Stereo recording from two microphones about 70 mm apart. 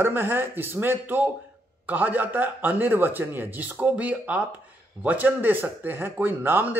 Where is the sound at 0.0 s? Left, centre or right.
Right.